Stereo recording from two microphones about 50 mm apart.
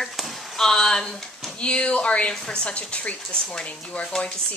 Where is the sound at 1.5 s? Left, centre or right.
Left.